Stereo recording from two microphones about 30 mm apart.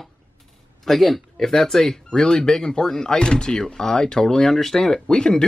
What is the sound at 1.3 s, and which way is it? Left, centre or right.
Speech, centre.